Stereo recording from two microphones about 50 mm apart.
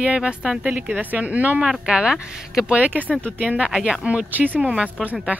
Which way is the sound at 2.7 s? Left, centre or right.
Right.